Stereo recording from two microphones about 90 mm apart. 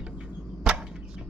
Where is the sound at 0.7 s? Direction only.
10° right (ahead or behind).